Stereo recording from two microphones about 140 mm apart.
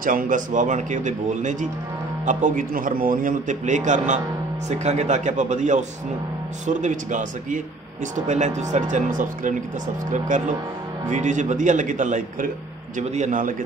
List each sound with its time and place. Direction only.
0.0 s a man's voice: 80° right
8.3 s a man's voice: 55° right (ahead or behind)